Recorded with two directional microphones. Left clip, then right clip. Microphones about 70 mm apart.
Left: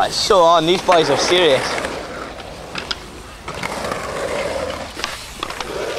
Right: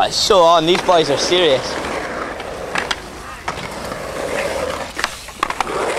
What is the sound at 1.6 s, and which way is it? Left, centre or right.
Speech, left.